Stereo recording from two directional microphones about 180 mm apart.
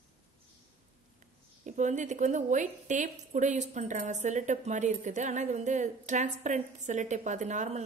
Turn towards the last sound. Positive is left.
turn(degrees=-40)  # may be behind; listen again after turning